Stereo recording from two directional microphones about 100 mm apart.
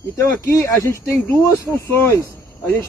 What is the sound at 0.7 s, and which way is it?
Speech, 35° left (ahead or behind).